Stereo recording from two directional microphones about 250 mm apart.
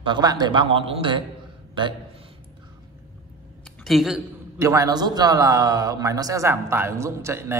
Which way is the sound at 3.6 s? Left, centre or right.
Centre.